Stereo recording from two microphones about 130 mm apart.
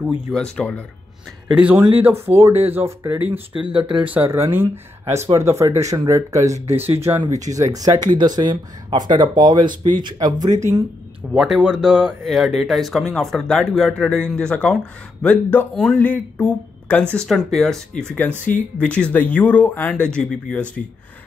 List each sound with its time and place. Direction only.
0.0 s speech: 5° right (ahead or behind)
0.3 s speech: 5° left (ahead or behind)
1.5 s speech: 10° right (ahead or behind); by 10.8 s 25° right (ahead or behind)
11.3 s speech: 5° right (ahead or behind)